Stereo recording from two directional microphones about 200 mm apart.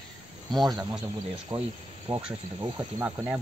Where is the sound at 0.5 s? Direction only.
Centre (ahead or behind).